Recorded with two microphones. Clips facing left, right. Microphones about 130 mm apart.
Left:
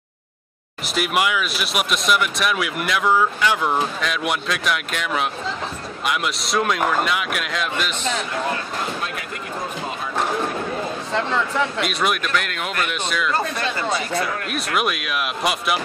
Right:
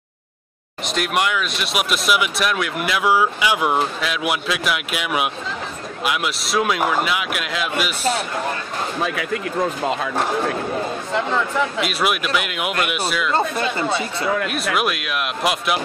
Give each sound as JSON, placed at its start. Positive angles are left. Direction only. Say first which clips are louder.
{"t": 0.8, "sound": "speech", "louder": "even", "side_deg": 5}
{"t": 9.0, "sound": "speech", "louder": "right 7 dB", "side_deg": -85}
{"t": 11.1, "sound": "speech", "louder": "even", "side_deg": -5}
{"t": 13.3, "sound": "speech", "louder": "right 3 dB", "side_deg": -25}
{"t": 14.5, "sound": "speech", "louder": "right 1 dB", "side_deg": 0}